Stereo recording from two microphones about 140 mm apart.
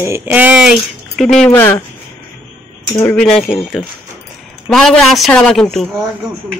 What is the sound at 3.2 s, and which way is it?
A woman's voice, centre (ahead or behind).